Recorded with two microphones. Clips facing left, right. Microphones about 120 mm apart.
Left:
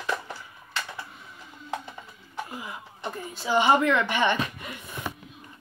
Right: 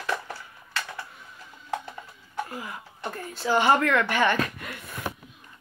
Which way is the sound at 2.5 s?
10° left (ahead or behind).